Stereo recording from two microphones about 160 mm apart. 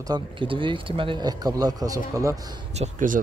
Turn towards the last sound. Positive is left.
turn(degrees=-50)  # may be behind; listen again after turning